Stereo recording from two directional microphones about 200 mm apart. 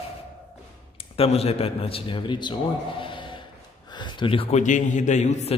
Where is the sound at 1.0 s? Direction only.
30° left (ahead or behind).